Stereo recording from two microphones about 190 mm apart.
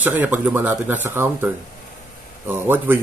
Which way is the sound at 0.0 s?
10° right (ahead or behind).